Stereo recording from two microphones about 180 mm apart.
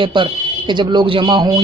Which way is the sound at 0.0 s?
25° right (ahead or behind).